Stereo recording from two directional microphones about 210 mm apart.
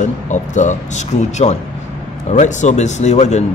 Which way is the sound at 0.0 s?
35° left (ahead or behind).